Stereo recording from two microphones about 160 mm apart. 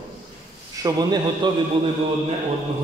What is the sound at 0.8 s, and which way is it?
Speech, 25° right (ahead or behind).